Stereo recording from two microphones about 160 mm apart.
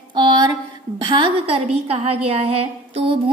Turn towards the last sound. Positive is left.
turn(degrees=-35)  # may be behind; listen again after turning